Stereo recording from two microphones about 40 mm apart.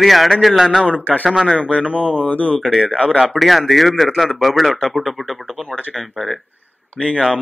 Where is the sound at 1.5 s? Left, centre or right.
Left.